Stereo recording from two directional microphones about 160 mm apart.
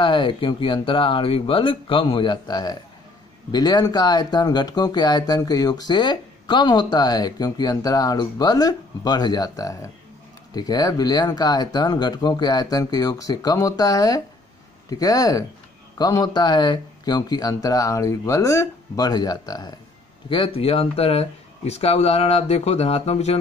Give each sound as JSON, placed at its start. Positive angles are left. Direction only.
{"t": 0.0, "sound": "speech", "side_deg": 30}